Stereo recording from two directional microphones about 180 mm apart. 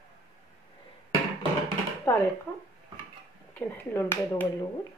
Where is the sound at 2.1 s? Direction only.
15° left (ahead or behind).